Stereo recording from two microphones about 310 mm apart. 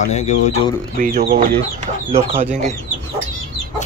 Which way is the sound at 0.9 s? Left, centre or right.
Right.